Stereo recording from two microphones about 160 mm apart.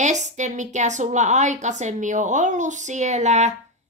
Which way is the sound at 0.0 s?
45° right (ahead or behind).